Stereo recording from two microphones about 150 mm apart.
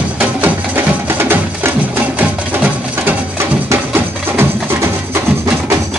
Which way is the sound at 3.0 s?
15° right (ahead or behind).